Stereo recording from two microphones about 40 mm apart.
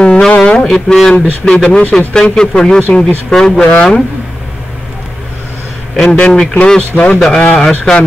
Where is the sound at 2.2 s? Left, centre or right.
Centre.